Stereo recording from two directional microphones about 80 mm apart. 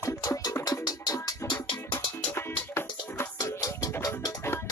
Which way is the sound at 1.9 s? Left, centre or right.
Left.